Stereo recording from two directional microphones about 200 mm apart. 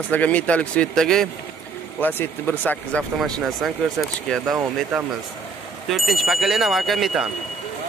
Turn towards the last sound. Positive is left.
turn(degrees=0)  # may be behind; listen again after turning